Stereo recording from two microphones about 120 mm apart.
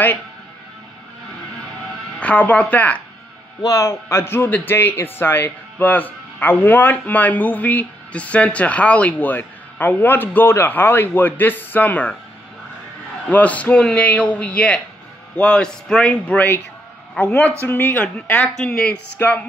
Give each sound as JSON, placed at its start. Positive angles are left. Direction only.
{"t": 2.1, "sound": "a man's voice", "side_deg": 10}
{"t": 3.6, "sound": "a man's voice", "side_deg": 25}
{"t": 13.3, "sound": "a man's voice", "side_deg": 10}